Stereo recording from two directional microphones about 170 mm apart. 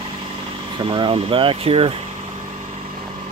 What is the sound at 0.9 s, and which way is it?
Speech, 30° right (ahead or behind).